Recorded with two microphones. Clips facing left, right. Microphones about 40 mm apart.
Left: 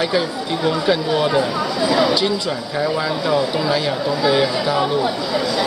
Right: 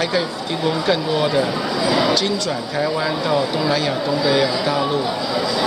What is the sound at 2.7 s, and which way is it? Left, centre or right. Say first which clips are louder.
Speech: left 1 dB; centre.